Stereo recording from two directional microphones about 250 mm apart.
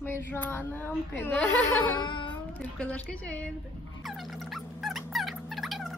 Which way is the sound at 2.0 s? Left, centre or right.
Centre.